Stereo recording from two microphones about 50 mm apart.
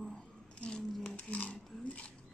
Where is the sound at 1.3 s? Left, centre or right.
Left.